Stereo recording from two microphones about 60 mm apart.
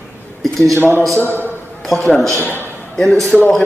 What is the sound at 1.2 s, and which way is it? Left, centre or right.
Speech, left.